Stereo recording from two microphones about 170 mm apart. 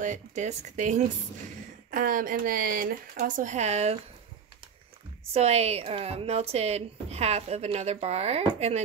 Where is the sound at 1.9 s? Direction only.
55° right (ahead or behind).